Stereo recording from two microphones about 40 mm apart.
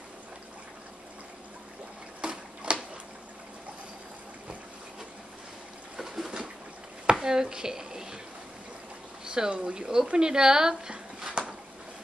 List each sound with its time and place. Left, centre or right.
2.2 s tick-tock: right
5.9 s a sound: centre
9.2 s speech: right